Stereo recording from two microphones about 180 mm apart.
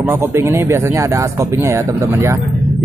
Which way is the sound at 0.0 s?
15° right (ahead or behind).